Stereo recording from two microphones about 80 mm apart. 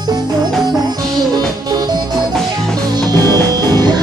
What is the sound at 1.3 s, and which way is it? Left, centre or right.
Music, right.